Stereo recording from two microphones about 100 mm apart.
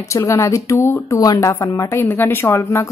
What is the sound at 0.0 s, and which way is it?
A woman's voice, 30° left (ahead or behind).